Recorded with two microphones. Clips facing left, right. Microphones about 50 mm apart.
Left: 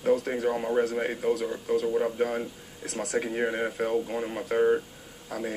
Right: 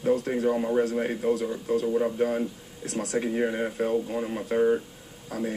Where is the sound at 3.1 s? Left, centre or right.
Centre.